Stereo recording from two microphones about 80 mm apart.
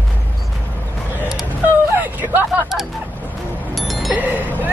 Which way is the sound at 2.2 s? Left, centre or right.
Right.